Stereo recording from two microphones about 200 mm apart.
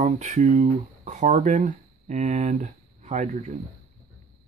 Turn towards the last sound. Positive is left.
turn(degrees=-35)  # may be behind; listen again after turning